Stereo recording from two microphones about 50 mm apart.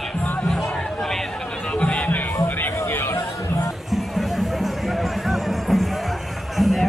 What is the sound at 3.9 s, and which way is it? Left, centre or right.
Music, centre.